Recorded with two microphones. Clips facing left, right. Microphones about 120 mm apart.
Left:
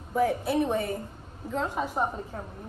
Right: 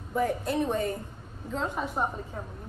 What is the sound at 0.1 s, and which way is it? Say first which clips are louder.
A woman's voice: left 2 dB; 5° left (ahead or behind).